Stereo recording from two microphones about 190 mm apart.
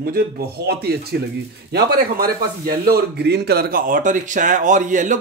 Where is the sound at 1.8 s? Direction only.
55° right (ahead or behind).